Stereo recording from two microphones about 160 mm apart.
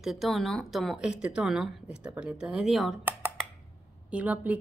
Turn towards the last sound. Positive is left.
turn(degrees=-10)  # may be behind; listen again after turning